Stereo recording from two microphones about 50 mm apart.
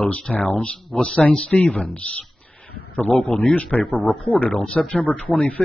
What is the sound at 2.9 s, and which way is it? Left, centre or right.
A man's voice, left.